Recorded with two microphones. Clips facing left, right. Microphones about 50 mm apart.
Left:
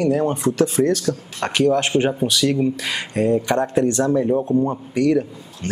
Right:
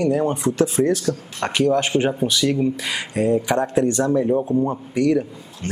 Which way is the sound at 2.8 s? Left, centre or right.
Centre.